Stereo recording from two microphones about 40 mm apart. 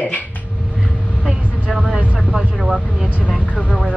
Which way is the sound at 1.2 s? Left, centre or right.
Right.